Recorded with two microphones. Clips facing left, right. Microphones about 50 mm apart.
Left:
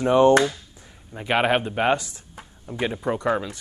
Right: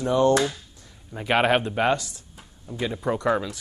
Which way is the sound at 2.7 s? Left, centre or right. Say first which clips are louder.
Left 2 dB; left.